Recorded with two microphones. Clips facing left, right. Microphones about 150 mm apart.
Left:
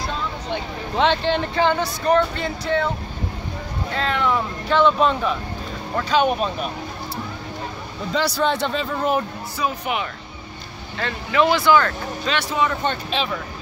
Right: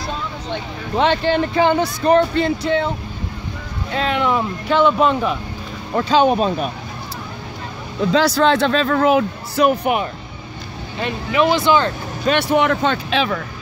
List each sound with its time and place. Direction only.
0.9 s speech: 5° right (ahead or behind); by 2.9 s 20° right (ahead or behind)
4.1 s speech: 15° right (ahead or behind)
5.9 s speech: 30° right (ahead or behind)
8.1 s speech: 90° right
11.0 s speech: 15° right (ahead or behind)
12.3 s speech: 60° right (ahead or behind); by 13.4 s 80° right